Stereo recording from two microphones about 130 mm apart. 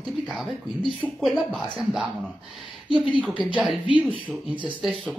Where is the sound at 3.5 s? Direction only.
Centre (ahead or behind).